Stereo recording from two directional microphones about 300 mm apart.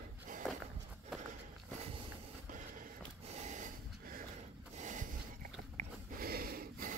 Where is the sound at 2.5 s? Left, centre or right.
Right.